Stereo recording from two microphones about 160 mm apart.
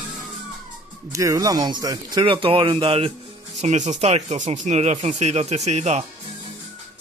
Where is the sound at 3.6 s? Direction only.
45° right (ahead or behind).